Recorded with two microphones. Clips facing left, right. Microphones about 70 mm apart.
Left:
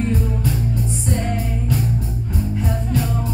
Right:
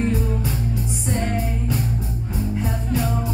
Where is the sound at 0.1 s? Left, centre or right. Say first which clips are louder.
Left 2 dB; centre.